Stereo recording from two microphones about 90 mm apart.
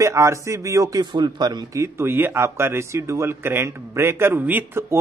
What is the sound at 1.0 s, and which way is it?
Speech, 55° right (ahead or behind).